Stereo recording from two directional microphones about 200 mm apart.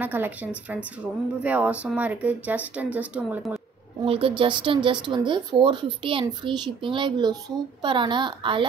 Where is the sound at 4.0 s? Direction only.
25° right (ahead or behind).